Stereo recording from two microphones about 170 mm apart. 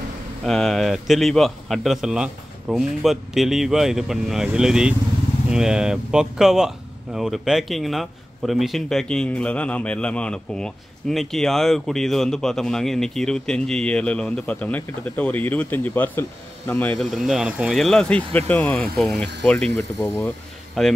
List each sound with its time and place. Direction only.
0.5 s a man's voice: 5° left (ahead or behind)
19.7 s speech: 20° left (ahead or behind)
20.8 s a man's voice: centre (ahead or behind)